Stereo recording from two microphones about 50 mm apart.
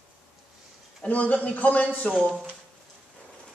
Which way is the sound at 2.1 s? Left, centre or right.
Centre.